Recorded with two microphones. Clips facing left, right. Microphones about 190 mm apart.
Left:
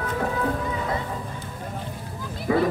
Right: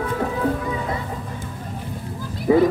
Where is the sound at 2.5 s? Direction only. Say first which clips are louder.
Right 6 dB; 20° right (ahead or behind).